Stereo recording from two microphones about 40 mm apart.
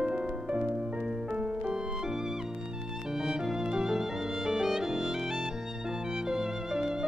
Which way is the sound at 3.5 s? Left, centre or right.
Centre.